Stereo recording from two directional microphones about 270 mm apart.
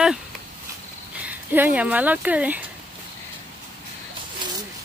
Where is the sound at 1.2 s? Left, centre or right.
Centre.